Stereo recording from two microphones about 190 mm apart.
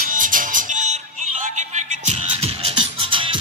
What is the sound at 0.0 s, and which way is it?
Music, 45° right (ahead or behind).